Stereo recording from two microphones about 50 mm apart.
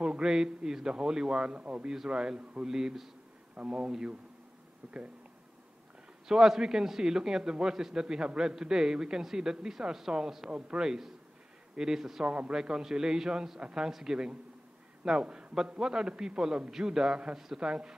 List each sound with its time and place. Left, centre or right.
0.0 s a man's voice: centre
3.5 s speech: right
6.2 s a man's voice: centre
12.3 s a man's voice: right